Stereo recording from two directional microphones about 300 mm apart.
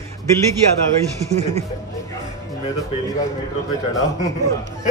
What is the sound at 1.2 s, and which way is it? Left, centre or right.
Speech, right.